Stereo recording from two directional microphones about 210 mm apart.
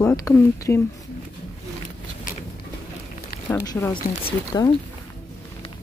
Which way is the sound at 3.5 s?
15° left (ahead or behind).